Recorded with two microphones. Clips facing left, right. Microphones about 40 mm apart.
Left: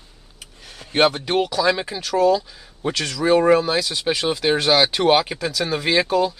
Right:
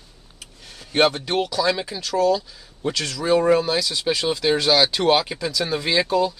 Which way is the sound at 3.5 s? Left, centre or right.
Centre.